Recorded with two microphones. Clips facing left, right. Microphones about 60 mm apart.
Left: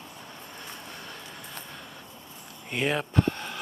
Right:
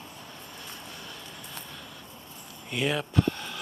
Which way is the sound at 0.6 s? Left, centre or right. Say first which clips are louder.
Left 2 dB; left.